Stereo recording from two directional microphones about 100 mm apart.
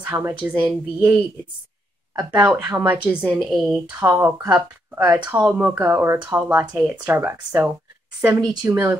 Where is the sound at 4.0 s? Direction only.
20° right (ahead or behind).